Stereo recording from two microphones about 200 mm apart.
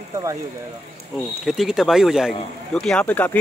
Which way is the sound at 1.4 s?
Centre (ahead or behind).